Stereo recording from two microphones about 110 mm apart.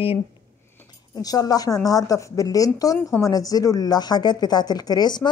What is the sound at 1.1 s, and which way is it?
A woman's voice, 35° left (ahead or behind).